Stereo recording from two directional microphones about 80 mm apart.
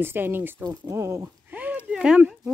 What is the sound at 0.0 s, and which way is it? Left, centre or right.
Speech, right.